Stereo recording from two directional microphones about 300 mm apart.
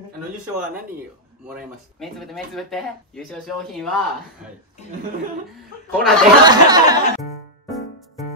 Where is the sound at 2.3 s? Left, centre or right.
Centre.